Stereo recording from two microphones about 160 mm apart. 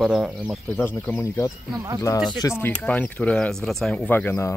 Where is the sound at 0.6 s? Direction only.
15° left (ahead or behind).